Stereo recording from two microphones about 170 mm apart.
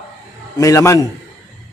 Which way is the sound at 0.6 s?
20° left (ahead or behind).